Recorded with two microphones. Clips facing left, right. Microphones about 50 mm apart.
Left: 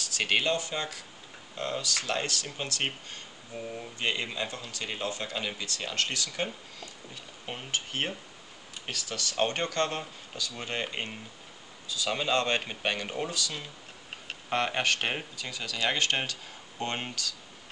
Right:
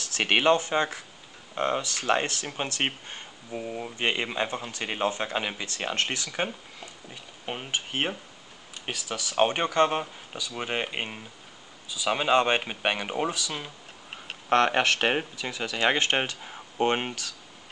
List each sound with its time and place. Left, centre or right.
0.0 s speech: right
14.5 s speech: right
15.5 s speech: right